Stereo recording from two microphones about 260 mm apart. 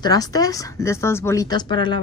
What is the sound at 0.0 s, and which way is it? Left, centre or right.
Speech, centre.